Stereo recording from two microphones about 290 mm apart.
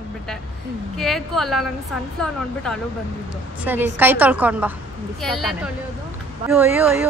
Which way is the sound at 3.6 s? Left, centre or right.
Centre.